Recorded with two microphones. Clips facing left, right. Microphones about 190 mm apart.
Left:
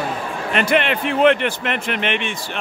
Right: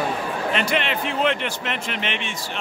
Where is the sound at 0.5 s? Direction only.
55° left (ahead or behind).